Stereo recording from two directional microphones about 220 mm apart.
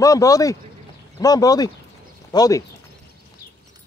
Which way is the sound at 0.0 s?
15° left (ahead or behind).